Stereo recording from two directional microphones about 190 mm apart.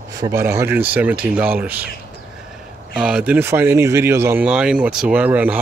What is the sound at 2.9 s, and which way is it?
Speech, 5° right (ahead or behind).